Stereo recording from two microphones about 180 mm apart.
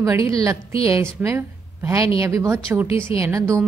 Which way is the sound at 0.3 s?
20° right (ahead or behind).